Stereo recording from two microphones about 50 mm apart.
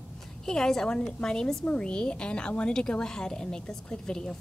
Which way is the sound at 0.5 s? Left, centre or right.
Centre.